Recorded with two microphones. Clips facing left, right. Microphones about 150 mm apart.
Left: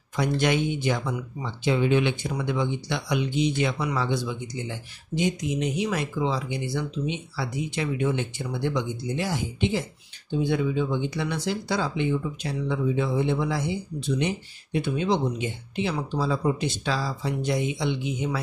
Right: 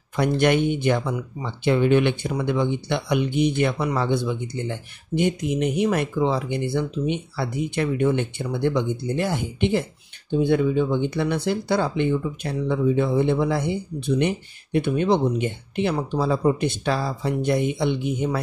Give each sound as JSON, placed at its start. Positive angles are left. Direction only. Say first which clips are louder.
{"t": 0.1, "sound": "speech", "louder": "right 4 dB", "side_deg": -55}